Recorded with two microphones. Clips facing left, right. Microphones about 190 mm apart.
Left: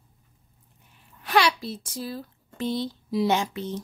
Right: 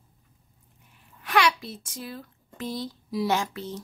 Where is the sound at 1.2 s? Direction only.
30° left (ahead or behind).